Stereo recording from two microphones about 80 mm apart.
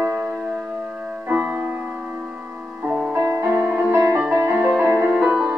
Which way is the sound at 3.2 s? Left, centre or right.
Right.